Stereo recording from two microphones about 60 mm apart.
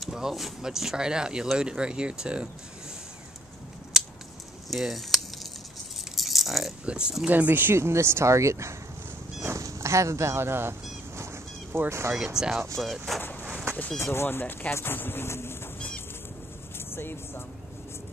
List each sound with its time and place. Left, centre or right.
0.0 s speech: centre
3.9 s a sound: centre
4.6 s keys jangling: centre
6.9 s speech: centre
7.2 s speech: right
7.7 s speech: right
9.4 s cat: right
11.9 s speech: right
12.4 s speech: centre
14.1 s speech: left
14.4 s speech: left
14.7 s speech: left
16.7 s speech: left